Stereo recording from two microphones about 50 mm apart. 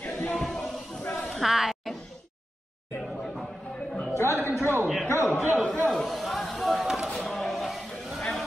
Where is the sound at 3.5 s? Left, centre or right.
Centre.